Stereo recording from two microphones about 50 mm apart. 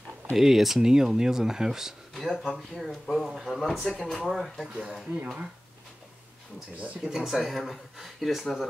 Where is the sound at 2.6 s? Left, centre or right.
Centre.